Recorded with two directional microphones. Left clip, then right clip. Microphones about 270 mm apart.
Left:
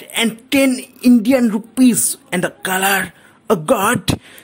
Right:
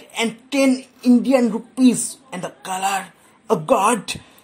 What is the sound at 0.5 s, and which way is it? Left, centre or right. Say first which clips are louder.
A woman's voice: left 1 dB; left.